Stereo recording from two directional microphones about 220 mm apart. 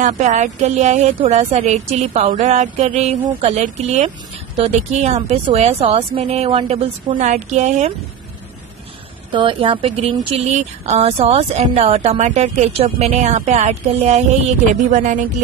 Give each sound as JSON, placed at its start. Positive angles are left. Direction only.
{"t": 0.0, "sound": "speech", "side_deg": -35}
{"t": 9.3, "sound": "speech", "side_deg": -20}